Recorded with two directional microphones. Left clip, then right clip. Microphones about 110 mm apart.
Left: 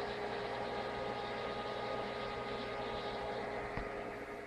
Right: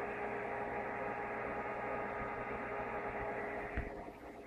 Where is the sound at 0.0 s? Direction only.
40° left (ahead or behind).